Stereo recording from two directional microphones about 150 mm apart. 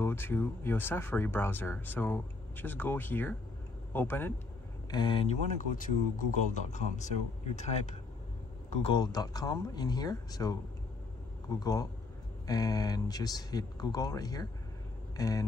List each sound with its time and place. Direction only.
0.0 s speech: 15° left (ahead or behind)
4.9 s speech: 30° left (ahead or behind)
5.6 s speech: 60° left (ahead or behind)
8.9 s speech: 25° left (ahead or behind)